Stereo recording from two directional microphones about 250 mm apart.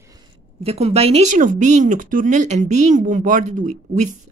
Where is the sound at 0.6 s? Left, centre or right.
Right.